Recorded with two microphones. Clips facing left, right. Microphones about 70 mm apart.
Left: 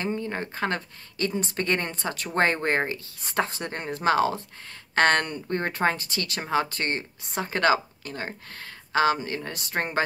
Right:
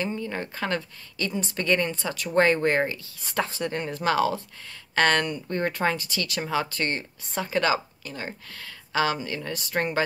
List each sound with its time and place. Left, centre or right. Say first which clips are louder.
0.0 s a woman's voice: even; left
7.4 s a woman's voice: left 2 dB; left